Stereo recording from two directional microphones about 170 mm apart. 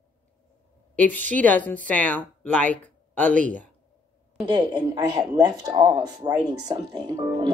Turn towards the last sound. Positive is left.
turn(degrees=-25)  # may be behind; listen again after turning